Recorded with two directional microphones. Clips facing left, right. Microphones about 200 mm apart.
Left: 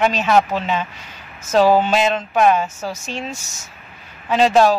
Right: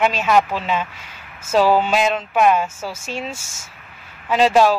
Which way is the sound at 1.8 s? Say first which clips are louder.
Left 1 dB; 5° right (ahead or behind).